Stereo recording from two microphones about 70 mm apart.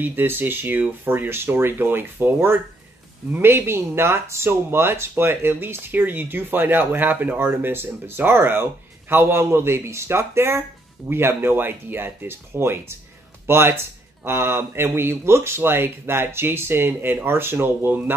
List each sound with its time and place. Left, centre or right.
0.0 s speech: right